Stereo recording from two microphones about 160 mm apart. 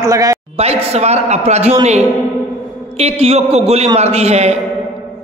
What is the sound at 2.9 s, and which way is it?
A man's voice, 40° right (ahead or behind).